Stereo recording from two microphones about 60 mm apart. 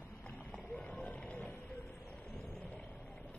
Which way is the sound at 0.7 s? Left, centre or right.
Centre.